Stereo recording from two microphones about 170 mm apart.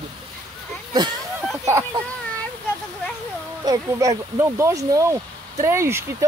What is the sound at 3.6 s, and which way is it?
Speech, 20° right (ahead or behind).